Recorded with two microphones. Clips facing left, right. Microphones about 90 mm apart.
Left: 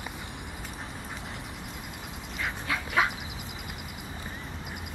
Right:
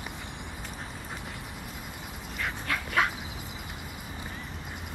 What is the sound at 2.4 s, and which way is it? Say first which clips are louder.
Dog: even; 5° left (ahead or behind).